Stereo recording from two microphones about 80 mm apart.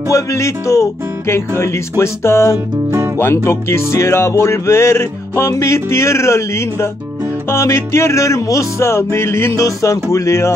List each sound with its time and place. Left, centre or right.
0.1 s music: left
9.6 s music: left